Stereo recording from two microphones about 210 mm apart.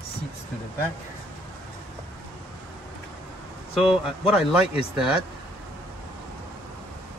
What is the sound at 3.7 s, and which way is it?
Speech, centre (ahead or behind).